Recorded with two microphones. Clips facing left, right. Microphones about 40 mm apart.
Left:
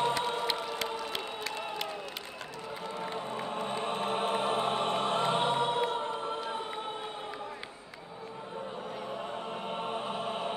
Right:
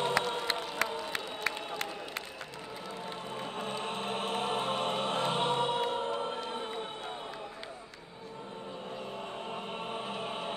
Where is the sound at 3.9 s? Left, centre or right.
Centre.